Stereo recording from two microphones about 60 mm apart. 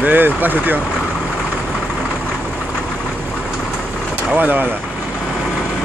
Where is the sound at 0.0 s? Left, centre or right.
Right.